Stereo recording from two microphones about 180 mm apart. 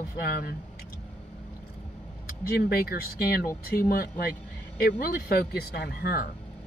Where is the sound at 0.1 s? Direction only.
55° left (ahead or behind).